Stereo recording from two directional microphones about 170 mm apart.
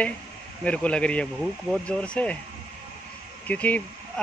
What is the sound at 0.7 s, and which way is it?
Speech, 5° left (ahead or behind).